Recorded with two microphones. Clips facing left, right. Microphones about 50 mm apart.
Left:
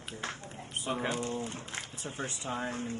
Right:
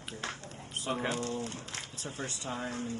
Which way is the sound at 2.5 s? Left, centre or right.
Left.